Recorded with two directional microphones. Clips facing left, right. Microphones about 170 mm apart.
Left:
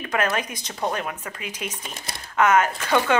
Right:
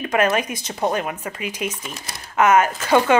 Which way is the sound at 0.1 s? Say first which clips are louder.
Right 5 dB; 15° right (ahead or behind).